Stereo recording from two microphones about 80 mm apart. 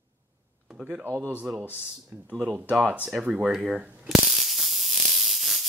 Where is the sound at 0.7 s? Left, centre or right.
Centre.